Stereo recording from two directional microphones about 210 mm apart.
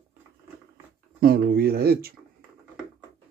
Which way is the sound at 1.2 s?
45° right (ahead or behind).